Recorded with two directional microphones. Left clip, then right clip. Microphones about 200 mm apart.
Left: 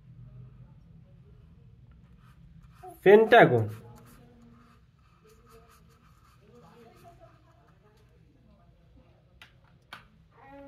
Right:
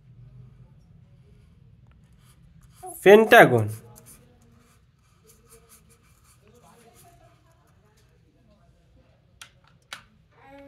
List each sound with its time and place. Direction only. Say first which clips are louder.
3.0 s speech: right 4 dB; 30° right (ahead or behind)